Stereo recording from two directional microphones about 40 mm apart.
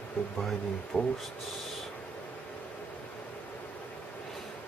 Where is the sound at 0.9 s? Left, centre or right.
Right.